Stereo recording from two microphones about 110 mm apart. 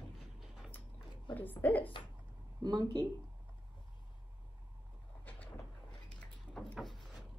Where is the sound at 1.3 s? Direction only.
15° left (ahead or behind).